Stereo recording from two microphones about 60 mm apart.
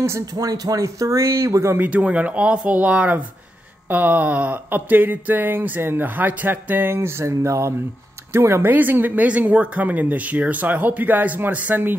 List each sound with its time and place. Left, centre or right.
0.2 s speech: right
1.8 s speech: right
3.9 s a sound: right
8.3 s speech: right
8.6 s speech: right